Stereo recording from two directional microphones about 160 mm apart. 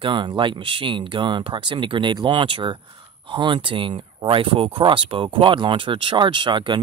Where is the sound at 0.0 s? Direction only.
30° right (ahead or behind).